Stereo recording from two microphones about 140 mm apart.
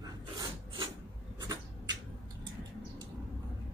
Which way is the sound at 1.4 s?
30° right (ahead or behind).